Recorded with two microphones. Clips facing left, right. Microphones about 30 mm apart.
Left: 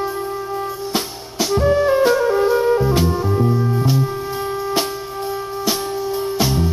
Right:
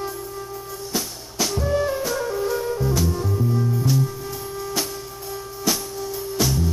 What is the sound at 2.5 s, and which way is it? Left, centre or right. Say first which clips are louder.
Music: left 8 dB; left.